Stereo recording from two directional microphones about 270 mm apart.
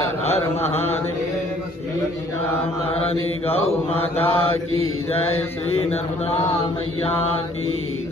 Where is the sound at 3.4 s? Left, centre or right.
Left.